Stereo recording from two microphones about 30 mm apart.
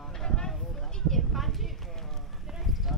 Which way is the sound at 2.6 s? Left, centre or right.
Centre.